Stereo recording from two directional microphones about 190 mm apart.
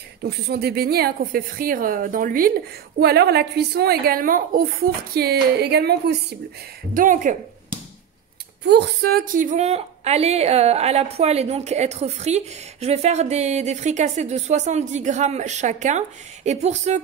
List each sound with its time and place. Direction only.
0.2 s a woman's voice: 55° right (ahead or behind)
3.0 s a woman's voice: 60° right (ahead or behind)
6.9 s a woman's voice: 45° right (ahead or behind)
8.6 s a woman's voice: 60° right (ahead or behind); by 17.0 s 35° right (ahead or behind)